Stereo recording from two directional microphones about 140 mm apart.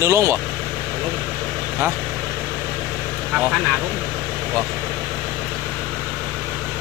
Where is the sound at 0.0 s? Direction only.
20° right (ahead or behind).